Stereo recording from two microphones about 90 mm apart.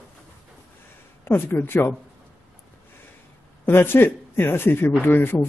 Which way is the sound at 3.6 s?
25° left (ahead or behind).